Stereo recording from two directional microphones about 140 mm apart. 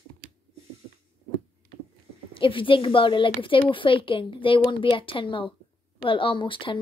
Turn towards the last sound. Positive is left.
turn(degrees=35)  # may be behind; listen again after turning